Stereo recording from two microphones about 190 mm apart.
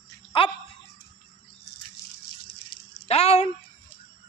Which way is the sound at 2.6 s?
35° left (ahead or behind).